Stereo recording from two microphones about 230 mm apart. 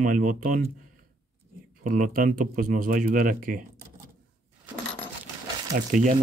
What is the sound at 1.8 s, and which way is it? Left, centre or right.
Speech, right.